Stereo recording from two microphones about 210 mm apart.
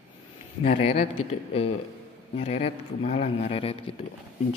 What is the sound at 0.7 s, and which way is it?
Speech, 30° left (ahead or behind).